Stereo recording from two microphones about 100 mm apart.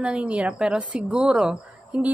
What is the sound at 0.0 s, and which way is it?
A woman's voice, 10° right (ahead or behind).